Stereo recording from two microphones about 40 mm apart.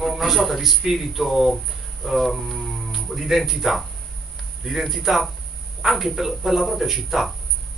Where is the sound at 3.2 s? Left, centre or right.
Centre.